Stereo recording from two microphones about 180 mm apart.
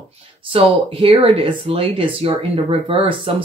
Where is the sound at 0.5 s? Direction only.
30° right (ahead or behind).